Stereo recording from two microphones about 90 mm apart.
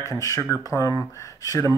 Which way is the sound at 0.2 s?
40° left (ahead or behind).